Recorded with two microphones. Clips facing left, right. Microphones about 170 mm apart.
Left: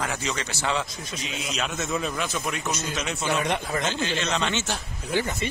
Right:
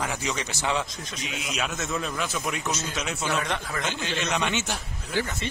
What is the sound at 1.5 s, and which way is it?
A man's voice, centre (ahead or behind).